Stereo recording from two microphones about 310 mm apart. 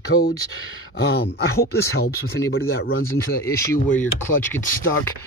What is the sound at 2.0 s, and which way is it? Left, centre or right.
Speech, left.